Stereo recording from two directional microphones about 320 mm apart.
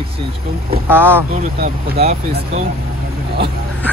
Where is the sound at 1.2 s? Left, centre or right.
Right.